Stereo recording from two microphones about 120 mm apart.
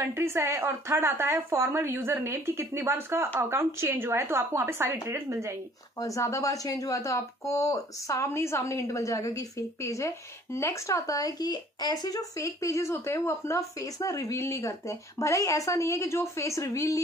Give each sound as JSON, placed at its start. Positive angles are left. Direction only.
{"t": 0.1, "sound": "a woman's voice", "side_deg": -20}
{"t": 5.9, "sound": "speech", "side_deg": 25}